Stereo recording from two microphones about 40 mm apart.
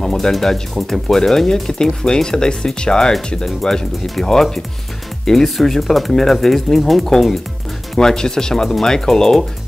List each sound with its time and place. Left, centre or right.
0.0 s speech: centre
8.0 s speech: centre